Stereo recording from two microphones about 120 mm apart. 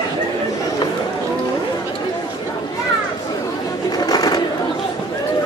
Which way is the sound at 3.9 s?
35° left (ahead or behind).